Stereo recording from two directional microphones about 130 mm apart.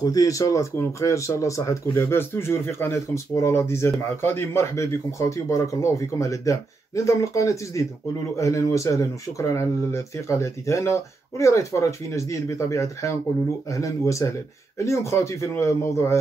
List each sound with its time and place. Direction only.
0.0 s speech: 25° left (ahead or behind)